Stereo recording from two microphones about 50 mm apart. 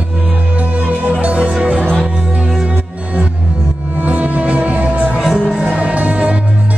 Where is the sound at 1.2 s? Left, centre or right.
Right.